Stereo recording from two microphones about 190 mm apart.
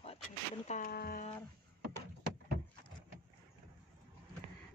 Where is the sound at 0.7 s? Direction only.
50° left (ahead or behind).